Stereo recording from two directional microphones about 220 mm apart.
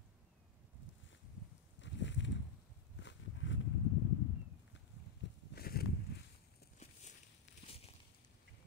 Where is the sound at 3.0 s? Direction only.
60° left (ahead or behind).